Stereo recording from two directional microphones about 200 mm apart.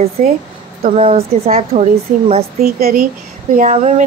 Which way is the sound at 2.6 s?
50° right (ahead or behind).